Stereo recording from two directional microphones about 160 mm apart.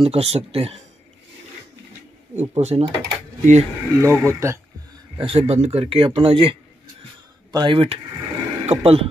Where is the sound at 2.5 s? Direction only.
45° right (ahead or behind).